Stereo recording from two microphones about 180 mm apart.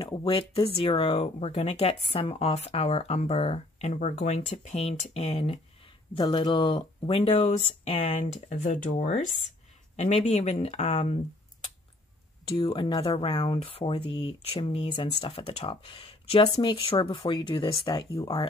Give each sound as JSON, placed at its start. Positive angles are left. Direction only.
{"t": 0.0, "sound": "speech", "side_deg": 30}